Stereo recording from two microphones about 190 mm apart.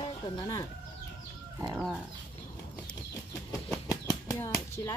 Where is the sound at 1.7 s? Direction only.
5° right (ahead or behind).